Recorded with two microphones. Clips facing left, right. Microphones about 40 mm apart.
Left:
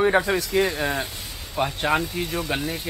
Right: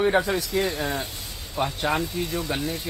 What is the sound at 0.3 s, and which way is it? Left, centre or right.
Speech, left.